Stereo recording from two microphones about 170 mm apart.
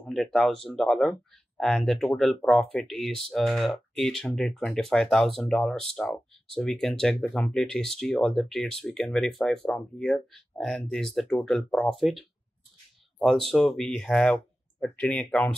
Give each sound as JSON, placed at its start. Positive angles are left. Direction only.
{"t": 0.0, "sound": "speech", "side_deg": 0}